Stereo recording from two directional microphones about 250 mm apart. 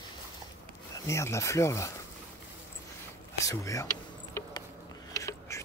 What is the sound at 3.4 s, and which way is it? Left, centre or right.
Speech, centre.